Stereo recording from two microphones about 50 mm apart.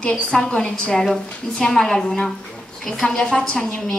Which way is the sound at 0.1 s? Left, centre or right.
Centre.